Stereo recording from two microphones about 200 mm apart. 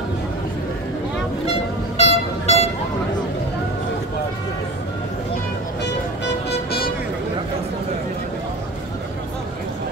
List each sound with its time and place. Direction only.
1.4 s vehicle: 30° left (ahead or behind)